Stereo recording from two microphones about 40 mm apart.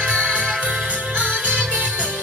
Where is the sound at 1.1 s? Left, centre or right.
Right.